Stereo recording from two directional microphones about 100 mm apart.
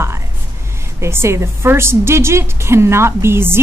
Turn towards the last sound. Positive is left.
turn(degrees=-25)  # may be behind; listen again after turning